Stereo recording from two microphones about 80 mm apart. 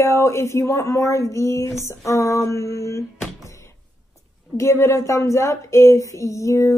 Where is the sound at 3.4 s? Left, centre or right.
Left.